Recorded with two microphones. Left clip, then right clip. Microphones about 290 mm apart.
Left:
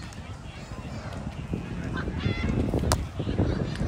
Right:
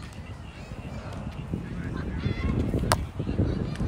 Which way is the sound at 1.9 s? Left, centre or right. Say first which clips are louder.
Left 4 dB; centre.